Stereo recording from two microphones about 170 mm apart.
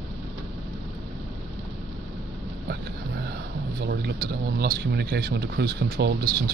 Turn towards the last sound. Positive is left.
turn(degrees=-70)  # may be behind; listen again after turning